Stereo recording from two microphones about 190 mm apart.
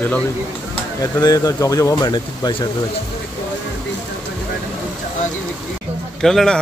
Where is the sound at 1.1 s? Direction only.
20° left (ahead or behind).